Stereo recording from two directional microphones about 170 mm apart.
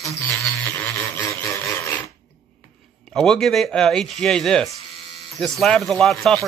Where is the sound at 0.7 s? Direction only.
15° left (ahead or behind).